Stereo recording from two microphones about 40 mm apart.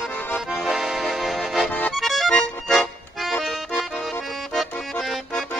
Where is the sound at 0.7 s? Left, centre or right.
Centre.